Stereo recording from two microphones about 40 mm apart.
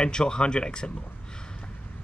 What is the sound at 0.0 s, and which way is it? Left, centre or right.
Speech, left.